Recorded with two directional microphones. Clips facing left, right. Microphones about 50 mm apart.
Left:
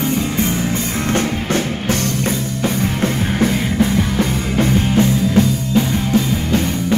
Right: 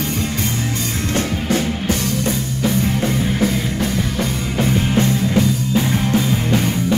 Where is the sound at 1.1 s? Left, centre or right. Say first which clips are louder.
Left 1 dB; left.